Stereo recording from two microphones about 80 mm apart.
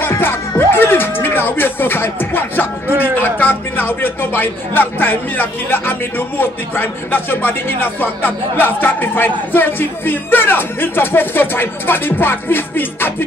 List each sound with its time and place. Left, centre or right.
0.0 s music: left
3.0 s speech: left